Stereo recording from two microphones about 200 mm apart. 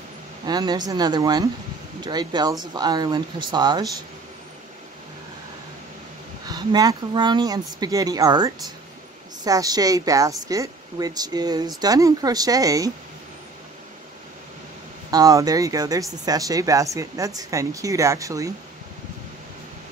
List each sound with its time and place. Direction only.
0.5 s speech: 20° right (ahead or behind)
6.4 s speech: 20° right (ahead or behind)
15.0 s speech: 20° right (ahead or behind)